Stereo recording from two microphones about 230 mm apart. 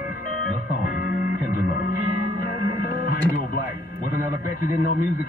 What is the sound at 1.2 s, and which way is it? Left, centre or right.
Music, left.